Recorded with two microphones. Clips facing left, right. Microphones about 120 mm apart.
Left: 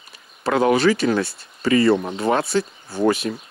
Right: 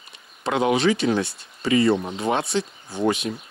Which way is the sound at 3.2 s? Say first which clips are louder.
Left 3 dB; 80° left.